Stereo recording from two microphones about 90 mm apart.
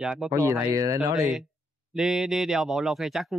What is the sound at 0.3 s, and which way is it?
Speech, 30° right (ahead or behind).